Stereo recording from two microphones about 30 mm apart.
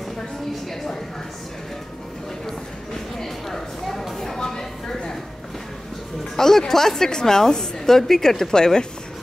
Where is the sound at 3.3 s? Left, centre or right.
Centre.